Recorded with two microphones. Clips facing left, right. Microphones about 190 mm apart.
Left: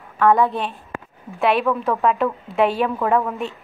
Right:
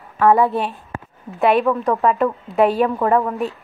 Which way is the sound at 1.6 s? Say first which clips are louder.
Right 2 dB; 15° right (ahead or behind).